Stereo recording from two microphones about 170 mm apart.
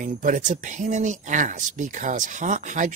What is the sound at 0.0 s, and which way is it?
Speech, 50° right (ahead or behind).